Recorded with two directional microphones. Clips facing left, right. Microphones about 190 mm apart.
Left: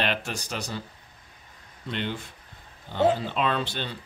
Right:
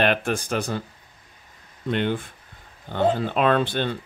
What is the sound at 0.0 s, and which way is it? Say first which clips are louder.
Speech: right 7 dB; 50° right (ahead or behind).